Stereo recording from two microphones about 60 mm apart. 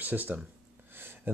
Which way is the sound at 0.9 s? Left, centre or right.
Right.